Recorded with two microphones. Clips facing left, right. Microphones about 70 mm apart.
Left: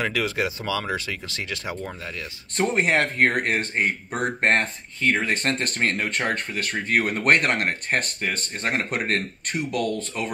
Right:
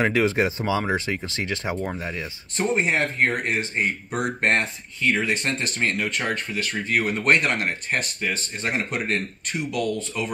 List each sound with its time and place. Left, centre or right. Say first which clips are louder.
0.0 s speech: right 4 dB; right
2.5 s speech: left 1 dB; left